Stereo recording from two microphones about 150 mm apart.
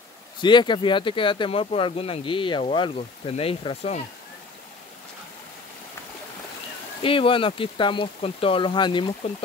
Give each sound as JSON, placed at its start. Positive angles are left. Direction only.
{"t": 0.4, "sound": "speech", "side_deg": 30}
{"t": 7.0, "sound": "speech", "side_deg": 35}